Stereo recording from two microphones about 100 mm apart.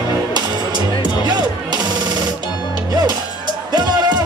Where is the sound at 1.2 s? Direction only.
45° right (ahead or behind).